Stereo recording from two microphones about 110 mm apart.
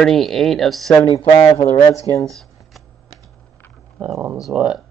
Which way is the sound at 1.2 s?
50° left (ahead or behind).